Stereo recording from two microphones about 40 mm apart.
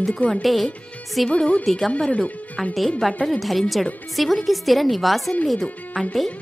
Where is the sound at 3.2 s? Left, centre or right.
Centre.